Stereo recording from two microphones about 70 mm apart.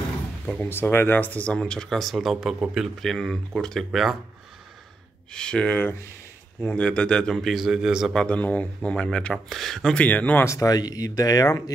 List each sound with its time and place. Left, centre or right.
0.7 s speech: left
1.6 s speech: centre
3.0 s speech: centre
5.3 s speech: centre
7.5 s speech: centre
8.3 s speech: left
9.5 s speech: centre
9.9 s speech: left
10.4 s speech: left
10.7 s speech: left